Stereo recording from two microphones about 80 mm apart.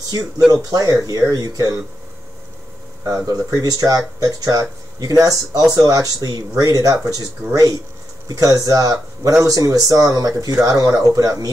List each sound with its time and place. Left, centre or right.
0.7 s speech: right
3.1 s speech: right
8.3 s speech: right